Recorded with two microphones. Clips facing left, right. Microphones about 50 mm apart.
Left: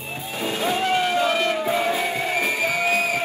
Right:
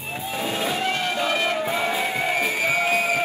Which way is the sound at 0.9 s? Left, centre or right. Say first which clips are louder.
Left 3 dB; centre.